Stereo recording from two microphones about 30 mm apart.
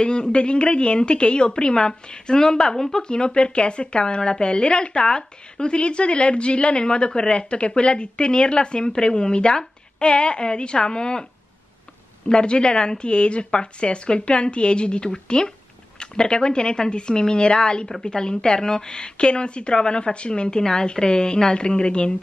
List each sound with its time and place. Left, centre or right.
0.0 s a woman's voice: left
12.3 s a woman's voice: left